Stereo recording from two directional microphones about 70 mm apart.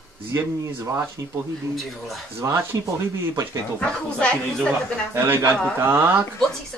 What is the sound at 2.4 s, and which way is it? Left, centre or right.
Speech, right.